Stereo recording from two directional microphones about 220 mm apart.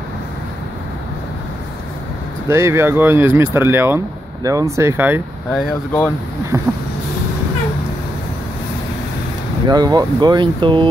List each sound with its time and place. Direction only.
2.5 s speech: 10° right (ahead or behind)
6.5 s a sound: 15° right (ahead or behind)
9.7 s speech: 20° right (ahead or behind)